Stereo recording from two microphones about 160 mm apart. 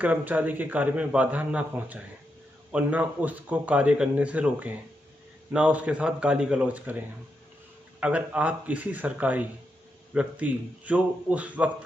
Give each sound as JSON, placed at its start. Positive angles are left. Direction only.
{"t": 0.0, "sound": "a man's voice", "side_deg": -10}